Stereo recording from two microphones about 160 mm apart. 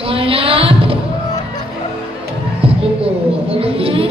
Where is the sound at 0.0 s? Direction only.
35° right (ahead or behind).